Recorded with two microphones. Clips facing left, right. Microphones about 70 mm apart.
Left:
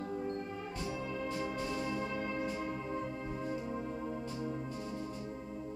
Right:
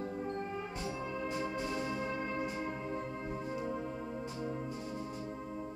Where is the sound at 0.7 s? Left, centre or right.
Right.